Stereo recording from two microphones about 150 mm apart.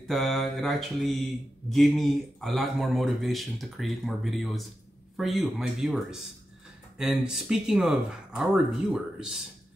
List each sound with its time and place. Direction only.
0.1 s speech: centre (ahead or behind)